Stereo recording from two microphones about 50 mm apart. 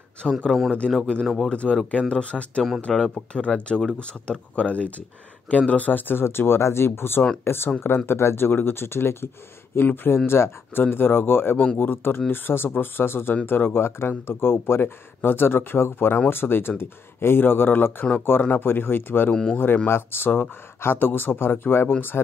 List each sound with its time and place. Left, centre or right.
0.2 s speech: centre
0.7 s speech: centre
1.2 s speech: centre
1.5 s speech: left
10.8 s speech: left
11.5 s speech: left
11.8 s speech: left
22.1 s speech: left